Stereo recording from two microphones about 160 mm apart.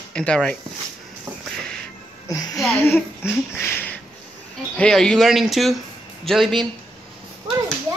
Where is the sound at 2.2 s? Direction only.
20° left (ahead or behind).